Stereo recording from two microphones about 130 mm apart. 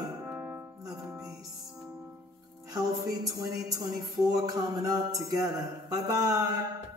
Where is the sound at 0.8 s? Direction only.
30° right (ahead or behind).